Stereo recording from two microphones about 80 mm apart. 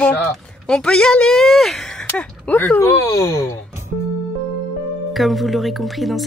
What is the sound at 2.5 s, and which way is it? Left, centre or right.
Speech, left.